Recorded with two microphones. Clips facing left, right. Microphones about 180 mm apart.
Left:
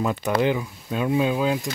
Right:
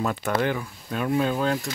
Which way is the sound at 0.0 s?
15° left (ahead or behind).